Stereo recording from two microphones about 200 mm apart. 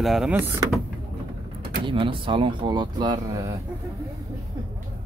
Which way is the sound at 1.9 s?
25° right (ahead or behind).